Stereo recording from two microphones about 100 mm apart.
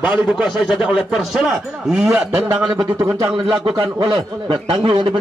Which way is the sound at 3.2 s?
55° right (ahead or behind).